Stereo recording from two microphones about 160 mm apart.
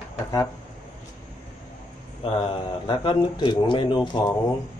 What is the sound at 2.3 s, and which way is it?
Speech, 30° left (ahead or behind).